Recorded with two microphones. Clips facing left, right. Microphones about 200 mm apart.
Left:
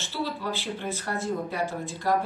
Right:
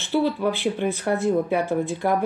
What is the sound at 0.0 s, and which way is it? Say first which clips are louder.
Speech: right 10 dB; 55° right (ahead or behind).